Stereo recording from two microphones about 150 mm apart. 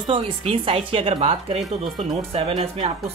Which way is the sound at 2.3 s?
40° right (ahead or behind).